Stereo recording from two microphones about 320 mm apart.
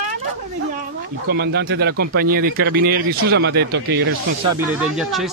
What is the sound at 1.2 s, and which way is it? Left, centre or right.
Speech, right.